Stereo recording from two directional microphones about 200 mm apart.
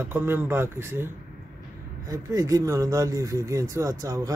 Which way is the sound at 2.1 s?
20° right (ahead or behind).